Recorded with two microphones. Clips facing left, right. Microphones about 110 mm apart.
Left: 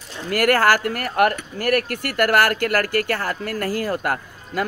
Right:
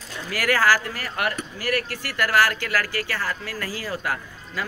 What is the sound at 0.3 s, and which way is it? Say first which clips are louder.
Speech: left 4 dB; 55° left (ahead or behind).